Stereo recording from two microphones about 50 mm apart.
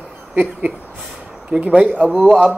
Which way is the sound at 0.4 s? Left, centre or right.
Right.